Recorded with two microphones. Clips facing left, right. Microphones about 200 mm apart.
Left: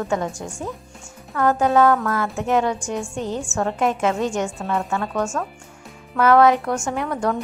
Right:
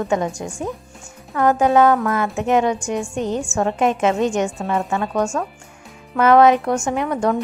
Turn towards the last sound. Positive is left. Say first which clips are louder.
# right 3 dB
turn(degrees=-15)  # may be behind; listen again after turning